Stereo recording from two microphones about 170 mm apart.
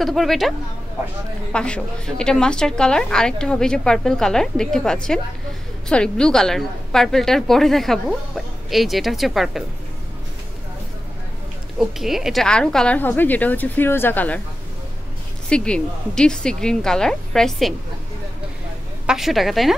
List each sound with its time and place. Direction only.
0.0 s a woman's voice: centre (ahead or behind)
12.0 s speech: centre (ahead or behind)
15.5 s a woman's voice: 5° left (ahead or behind)
19.0 s a woman's voice: centre (ahead or behind)